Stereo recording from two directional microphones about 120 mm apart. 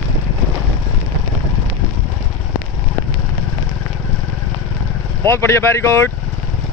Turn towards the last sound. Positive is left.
turn(degrees=20)  # may be behind; listen again after turning